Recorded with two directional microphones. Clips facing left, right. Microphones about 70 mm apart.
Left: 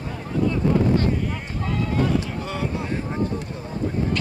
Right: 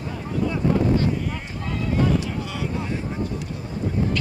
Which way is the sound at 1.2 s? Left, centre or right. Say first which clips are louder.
Left 2 dB; centre.